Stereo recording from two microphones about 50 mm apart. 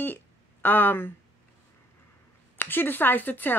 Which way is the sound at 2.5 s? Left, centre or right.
Left.